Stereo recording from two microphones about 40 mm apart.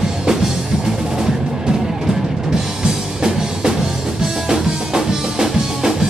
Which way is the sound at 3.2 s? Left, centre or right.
Centre.